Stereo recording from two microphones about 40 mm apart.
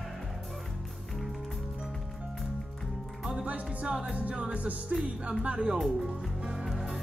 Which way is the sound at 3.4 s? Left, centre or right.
Right.